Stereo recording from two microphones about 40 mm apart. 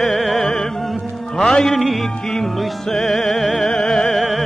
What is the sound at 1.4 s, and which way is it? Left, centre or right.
Music, centre.